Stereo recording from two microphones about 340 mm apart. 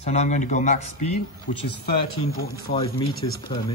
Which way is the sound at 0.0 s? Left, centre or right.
Centre.